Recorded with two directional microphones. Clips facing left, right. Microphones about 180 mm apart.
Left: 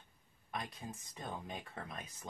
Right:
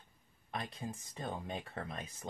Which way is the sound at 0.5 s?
25° right (ahead or behind).